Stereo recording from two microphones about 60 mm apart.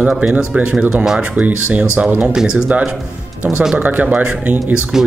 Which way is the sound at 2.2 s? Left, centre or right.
Centre.